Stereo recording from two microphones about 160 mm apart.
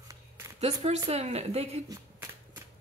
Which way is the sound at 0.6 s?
40° right (ahead or behind).